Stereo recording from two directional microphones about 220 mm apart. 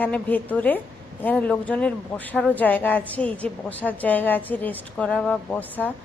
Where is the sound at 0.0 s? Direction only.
5° left (ahead or behind).